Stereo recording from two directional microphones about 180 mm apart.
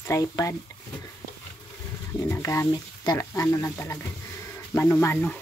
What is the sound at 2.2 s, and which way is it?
Speech, 15° left (ahead or behind).